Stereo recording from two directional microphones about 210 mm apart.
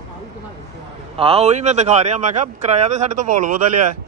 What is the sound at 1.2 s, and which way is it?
Speech, 30° right (ahead or behind).